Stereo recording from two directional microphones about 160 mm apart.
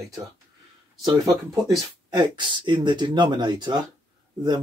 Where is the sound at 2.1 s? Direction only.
30° right (ahead or behind).